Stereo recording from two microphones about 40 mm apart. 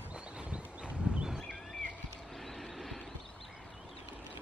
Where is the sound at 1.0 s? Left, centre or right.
Right.